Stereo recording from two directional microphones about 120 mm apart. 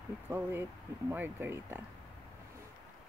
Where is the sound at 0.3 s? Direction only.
20° right (ahead or behind).